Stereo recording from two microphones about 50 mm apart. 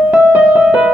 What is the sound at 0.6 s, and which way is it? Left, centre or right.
Music, centre.